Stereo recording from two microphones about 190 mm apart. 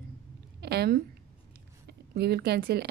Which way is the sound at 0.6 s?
55° right (ahead or behind).